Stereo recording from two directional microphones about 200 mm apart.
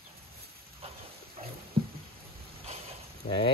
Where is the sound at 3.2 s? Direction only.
25° left (ahead or behind).